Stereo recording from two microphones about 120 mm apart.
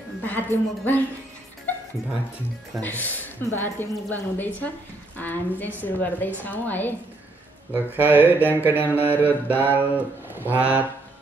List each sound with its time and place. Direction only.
0.2 s a woman's voice: 15° left (ahead or behind)
2.8 s a woman's voice: 15° left (ahead or behind)
7.7 s mantra: 15° right (ahead or behind)